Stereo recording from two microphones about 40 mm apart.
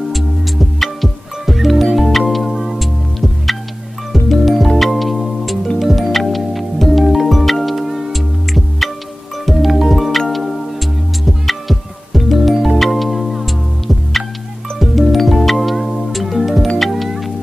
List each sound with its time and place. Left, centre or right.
0.1 s music: centre